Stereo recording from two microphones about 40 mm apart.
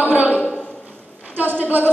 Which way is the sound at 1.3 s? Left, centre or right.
Right.